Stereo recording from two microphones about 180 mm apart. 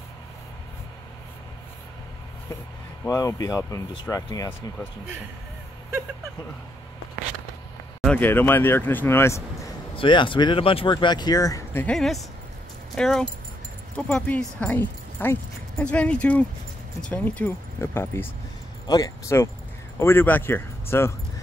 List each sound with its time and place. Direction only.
3.1 s speech: 20° left (ahead or behind)
8.0 s speech: 10° left (ahead or behind)
9.9 s speech: 25° left (ahead or behind)